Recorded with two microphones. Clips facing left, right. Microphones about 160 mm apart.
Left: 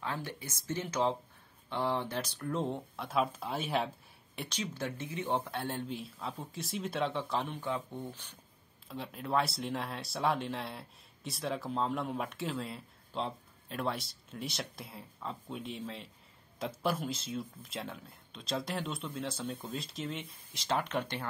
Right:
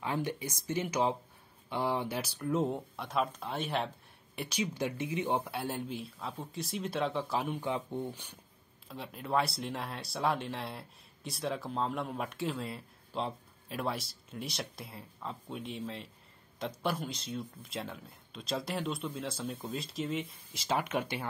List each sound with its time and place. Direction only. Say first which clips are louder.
0.0 s speech: right 5 dB; 15° right (ahead or behind); by 3.9 s centre (ahead or behind)
4.4 s speech: right 4 dB; 10° right (ahead or behind)
7.7 s speech: right 3 dB; 20° right (ahead or behind)
8.8 s speech: left 1 dB; centre (ahead or behind)